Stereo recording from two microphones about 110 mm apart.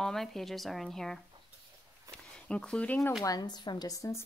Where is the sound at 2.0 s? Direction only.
10° left (ahead or behind).